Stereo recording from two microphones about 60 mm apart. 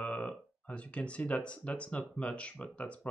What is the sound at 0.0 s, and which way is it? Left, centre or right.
Speech, left.